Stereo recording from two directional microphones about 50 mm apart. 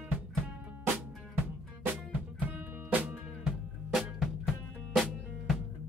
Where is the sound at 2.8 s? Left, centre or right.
Right.